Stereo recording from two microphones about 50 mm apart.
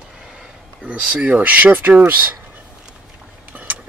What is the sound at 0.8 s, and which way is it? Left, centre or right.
Speech, right.